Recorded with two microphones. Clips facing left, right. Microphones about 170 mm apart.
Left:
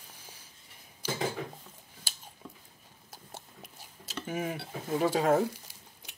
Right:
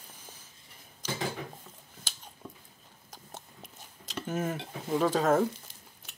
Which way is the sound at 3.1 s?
10° left (ahead or behind).